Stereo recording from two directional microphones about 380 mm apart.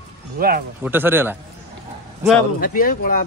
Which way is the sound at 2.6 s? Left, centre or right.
Left.